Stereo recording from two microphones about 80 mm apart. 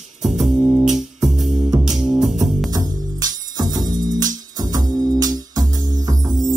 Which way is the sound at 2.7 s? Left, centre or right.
Right.